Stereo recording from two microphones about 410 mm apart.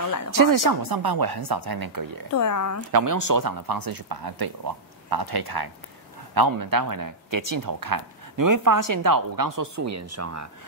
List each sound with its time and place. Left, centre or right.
0.3 s speech: right
2.3 s speech: left
2.9 s speech: right